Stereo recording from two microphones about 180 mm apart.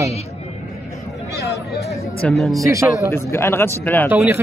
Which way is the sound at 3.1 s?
15° left (ahead or behind).